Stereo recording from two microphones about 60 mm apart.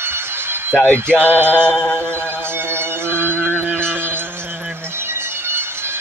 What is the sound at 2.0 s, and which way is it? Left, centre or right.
Music, left.